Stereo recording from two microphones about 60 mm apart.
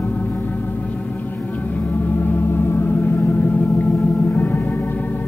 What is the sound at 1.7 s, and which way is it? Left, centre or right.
Organ, left.